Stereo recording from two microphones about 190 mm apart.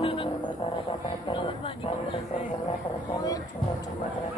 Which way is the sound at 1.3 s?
25° left (ahead or behind).